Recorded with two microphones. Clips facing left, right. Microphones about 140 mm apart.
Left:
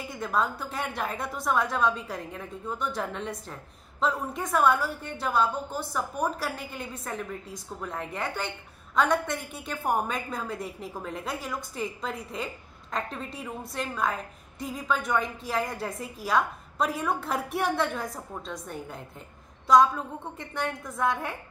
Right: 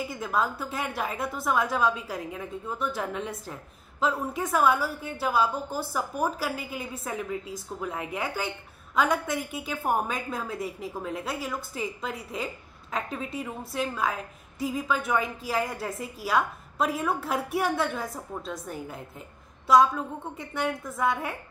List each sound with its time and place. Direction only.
0.0 s a woman's voice: centre (ahead or behind)